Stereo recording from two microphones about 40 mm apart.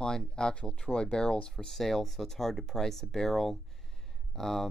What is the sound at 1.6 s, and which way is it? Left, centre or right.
Speech, centre.